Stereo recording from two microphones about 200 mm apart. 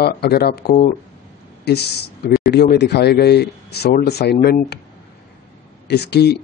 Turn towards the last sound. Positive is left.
turn(degrees=55)  # may be behind; listen again after turning